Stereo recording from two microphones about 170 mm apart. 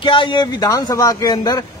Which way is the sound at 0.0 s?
30° left (ahead or behind).